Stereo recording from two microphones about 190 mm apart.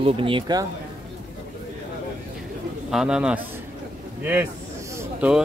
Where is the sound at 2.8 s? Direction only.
5° right (ahead or behind).